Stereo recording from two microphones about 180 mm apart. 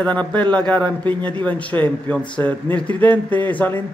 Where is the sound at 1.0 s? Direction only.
25° right (ahead or behind).